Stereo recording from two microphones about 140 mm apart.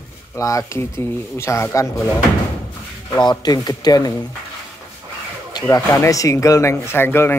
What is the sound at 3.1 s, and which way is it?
Speech, 30° left (ahead or behind).